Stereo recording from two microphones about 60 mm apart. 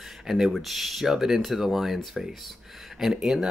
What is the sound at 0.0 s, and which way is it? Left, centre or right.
Speech, centre.